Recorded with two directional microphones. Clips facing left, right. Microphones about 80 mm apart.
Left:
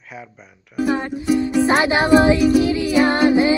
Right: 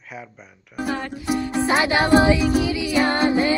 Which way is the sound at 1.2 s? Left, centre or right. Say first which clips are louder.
Left 5 dB; right.